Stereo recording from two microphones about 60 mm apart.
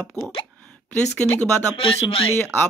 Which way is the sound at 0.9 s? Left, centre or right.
Left.